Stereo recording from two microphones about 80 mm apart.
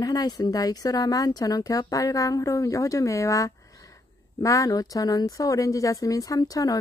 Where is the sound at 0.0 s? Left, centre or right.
Left.